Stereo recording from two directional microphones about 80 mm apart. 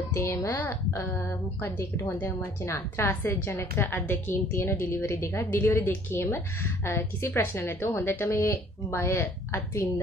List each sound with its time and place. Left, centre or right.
0.1 s a woman's voice: left